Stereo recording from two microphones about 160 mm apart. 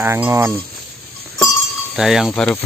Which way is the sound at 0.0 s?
15° right (ahead or behind).